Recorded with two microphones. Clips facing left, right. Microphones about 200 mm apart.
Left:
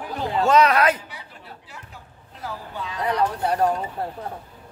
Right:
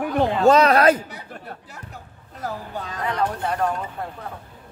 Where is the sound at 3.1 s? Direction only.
35° left (ahead or behind).